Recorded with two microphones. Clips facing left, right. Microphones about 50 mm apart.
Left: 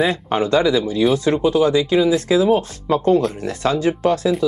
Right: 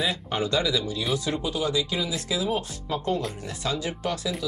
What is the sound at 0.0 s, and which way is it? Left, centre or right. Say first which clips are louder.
Speech: left 9 dB; left.